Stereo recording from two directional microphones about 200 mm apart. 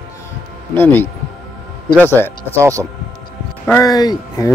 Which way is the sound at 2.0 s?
10° left (ahead or behind).